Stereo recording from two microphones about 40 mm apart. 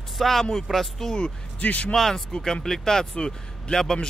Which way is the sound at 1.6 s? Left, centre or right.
Left.